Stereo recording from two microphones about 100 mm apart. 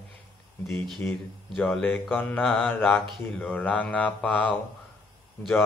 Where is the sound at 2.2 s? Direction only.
15° left (ahead or behind).